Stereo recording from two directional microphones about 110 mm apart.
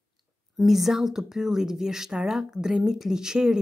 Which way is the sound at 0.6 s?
Centre (ahead or behind).